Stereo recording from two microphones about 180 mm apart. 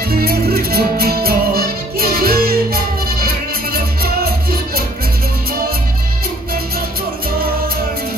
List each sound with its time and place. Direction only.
0.1 s music: 55° right (ahead or behind)